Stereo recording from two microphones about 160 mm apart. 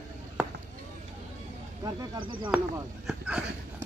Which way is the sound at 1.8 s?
25° right (ahead or behind).